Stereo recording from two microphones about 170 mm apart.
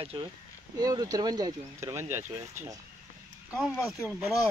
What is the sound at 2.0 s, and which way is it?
Speech, 45° right (ahead or behind).